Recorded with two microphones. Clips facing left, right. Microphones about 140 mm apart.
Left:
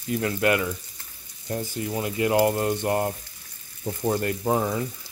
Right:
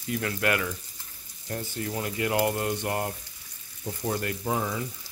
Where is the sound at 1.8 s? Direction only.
20° left (ahead or behind).